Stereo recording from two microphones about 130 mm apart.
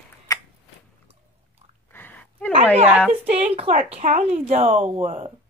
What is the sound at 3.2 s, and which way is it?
Speech, 55° right (ahead or behind).